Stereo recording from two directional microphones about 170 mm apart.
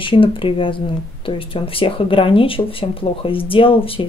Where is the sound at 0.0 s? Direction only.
30° left (ahead or behind).